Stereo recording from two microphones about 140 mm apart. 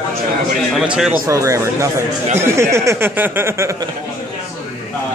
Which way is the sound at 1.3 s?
20° right (ahead or behind).